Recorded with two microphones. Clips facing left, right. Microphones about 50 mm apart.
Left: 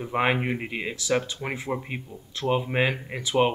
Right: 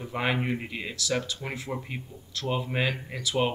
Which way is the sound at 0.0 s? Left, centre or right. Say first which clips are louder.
Left 4 dB; left.